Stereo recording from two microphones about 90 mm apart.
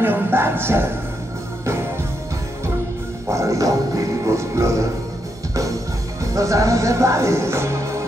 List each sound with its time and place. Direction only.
0.0 s speech: 25° right (ahead or behind)
3.3 s music: 35° right (ahead or behind)
6.2 s music: 35° right (ahead or behind)